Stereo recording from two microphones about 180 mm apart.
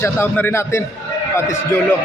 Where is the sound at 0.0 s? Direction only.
15° left (ahead or behind).